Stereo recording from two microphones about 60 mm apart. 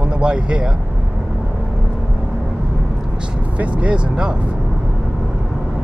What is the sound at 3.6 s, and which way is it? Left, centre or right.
Speech, centre.